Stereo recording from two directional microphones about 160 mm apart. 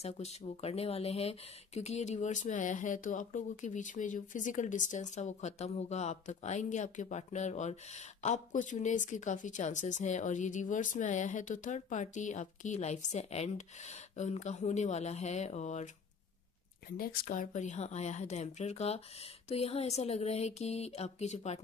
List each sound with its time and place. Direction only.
0.0 s speech: 40° left (ahead or behind)
16.9 s speech: 65° left (ahead or behind); by 21.5 s 45° left (ahead or behind)